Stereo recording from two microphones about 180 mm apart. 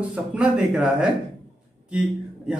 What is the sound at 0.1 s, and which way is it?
Speech, 5° right (ahead or behind).